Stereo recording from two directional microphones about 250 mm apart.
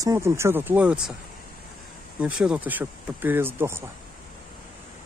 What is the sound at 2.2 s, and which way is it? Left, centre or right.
Speech, centre.